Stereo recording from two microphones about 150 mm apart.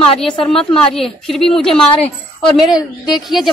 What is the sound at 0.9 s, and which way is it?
Speech, centre (ahead or behind).